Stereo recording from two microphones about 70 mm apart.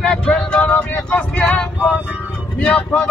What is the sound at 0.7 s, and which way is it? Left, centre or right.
Speech, left.